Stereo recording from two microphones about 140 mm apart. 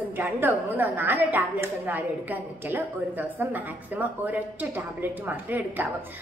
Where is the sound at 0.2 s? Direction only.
15° right (ahead or behind).